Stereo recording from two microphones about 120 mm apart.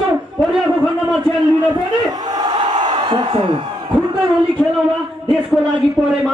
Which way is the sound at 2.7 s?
40° right (ahead or behind).